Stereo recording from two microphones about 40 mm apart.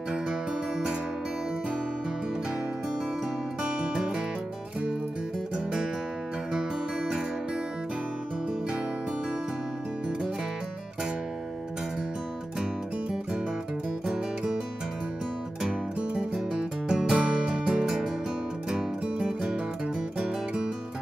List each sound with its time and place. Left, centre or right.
0.3 s music: centre
3.6 s music: right
14.0 s music: centre
16.3 s music: centre
19.2 s music: centre